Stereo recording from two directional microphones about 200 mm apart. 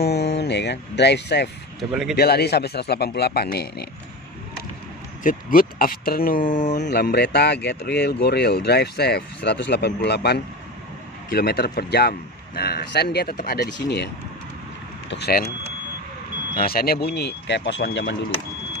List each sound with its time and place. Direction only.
0.0 s speech: 55° left (ahead or behind)
1.8 s speech: centre (ahead or behind)
2.1 s speech: 55° left (ahead or behind)
5.2 s speech: 45° left (ahead or behind)
6.8 s speech: 55° left (ahead or behind)
16.5 s speech: 50° left (ahead or behind)